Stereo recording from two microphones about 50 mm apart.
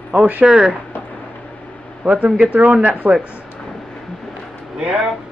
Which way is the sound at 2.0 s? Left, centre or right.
Right.